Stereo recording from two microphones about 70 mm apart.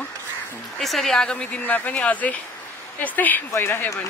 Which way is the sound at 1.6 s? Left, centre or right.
Left.